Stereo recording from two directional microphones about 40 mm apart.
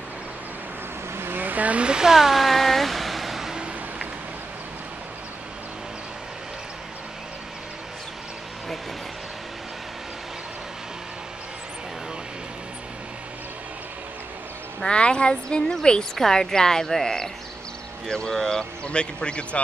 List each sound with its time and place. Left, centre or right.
1.1 s vehicle: right
1.4 s vehicle: right
1.8 s a sound: right
3.5 s vehicle: right
14.8 s speech: left
18.9 s speech: left